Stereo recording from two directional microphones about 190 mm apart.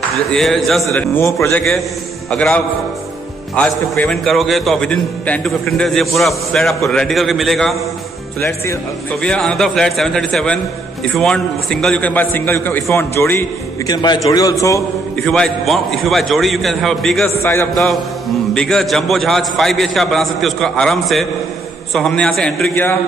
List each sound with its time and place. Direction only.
0.1 s a man's voice: centre (ahead or behind)
1.1 s a man's voice: 10° left (ahead or behind)
8.4 s a man's voice: 15° left (ahead or behind)
15.2 s a man's voice: 5° left (ahead or behind)
17.4 s a man's voice: 15° left (ahead or behind)
18.5 s a man's voice: 5° left (ahead or behind)